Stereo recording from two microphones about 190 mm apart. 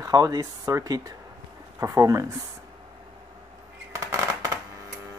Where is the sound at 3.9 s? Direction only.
15° right (ahead or behind).